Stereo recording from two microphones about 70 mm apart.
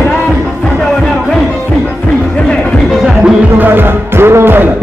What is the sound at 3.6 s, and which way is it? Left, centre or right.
Music, right.